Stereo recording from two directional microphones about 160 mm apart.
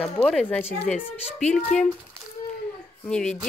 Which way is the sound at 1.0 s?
40° left (ahead or behind).